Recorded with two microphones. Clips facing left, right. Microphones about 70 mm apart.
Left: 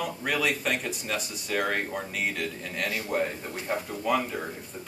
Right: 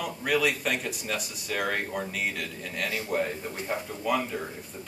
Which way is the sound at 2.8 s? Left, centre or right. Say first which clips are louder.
Even; left.